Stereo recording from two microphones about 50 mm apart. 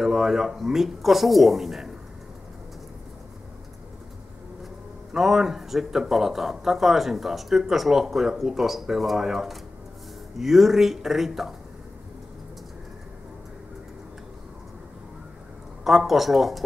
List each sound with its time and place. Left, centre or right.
0.0 s speech: centre
5.1 s speech: centre
15.8 s speech: centre